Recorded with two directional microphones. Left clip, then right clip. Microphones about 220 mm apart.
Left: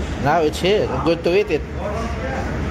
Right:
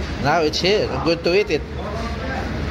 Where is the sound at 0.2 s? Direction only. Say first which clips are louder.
Left 1 dB; centre (ahead or behind).